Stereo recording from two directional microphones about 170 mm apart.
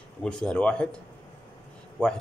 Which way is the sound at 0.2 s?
5° left (ahead or behind).